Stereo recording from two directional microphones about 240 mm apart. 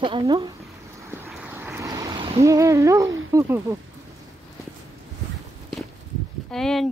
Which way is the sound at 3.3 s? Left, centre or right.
Centre.